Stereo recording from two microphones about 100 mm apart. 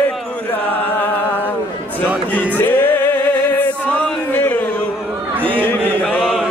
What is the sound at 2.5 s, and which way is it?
Music, 20° left (ahead or behind).